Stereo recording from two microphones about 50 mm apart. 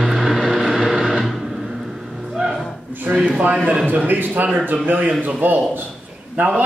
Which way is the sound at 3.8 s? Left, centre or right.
Right.